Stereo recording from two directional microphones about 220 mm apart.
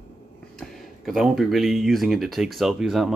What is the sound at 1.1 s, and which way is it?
Speech, centre (ahead or behind).